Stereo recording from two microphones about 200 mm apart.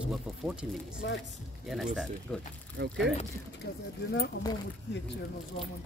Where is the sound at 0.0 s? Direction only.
5° right (ahead or behind).